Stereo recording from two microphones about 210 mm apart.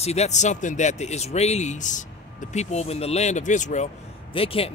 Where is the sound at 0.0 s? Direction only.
30° left (ahead or behind).